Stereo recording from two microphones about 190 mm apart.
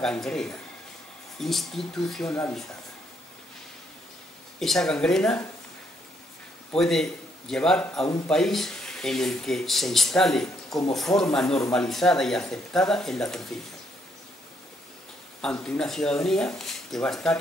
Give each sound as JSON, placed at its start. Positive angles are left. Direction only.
{"t": 0.0, "sound": "speech", "side_deg": 5}
{"t": 2.2, "sound": "speech", "side_deg": 15}
{"t": 4.6, "sound": "speech", "side_deg": 0}
{"t": 6.7, "sound": "speech", "side_deg": 0}
{"t": 15.6, "sound": "speech", "side_deg": 5}